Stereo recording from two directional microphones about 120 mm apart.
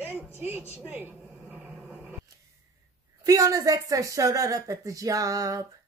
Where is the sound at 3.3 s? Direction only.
30° right (ahead or behind).